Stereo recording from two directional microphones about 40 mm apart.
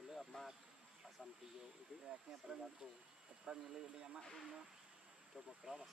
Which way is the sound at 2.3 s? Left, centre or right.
Centre.